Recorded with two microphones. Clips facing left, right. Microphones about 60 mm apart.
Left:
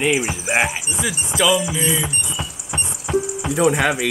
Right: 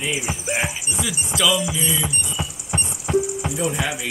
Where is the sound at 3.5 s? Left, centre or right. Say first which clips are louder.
Left 12 dB; left.